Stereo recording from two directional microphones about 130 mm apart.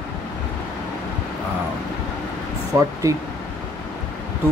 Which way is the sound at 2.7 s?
20° right (ahead or behind).